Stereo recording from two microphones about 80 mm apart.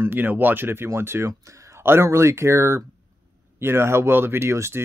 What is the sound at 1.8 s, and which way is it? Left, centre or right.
Speech, right.